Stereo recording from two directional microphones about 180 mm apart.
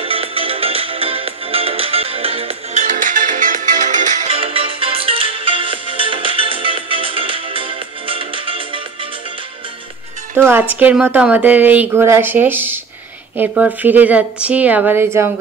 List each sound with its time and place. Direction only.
0.0 s music: 30° right (ahead or behind)
10.3 s speech: 10° right (ahead or behind)